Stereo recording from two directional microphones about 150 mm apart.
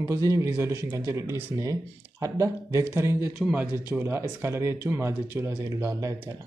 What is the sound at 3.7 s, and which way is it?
Speech, 15° right (ahead or behind).